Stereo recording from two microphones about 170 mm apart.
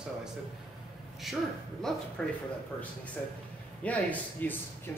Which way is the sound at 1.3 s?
Centre (ahead or behind).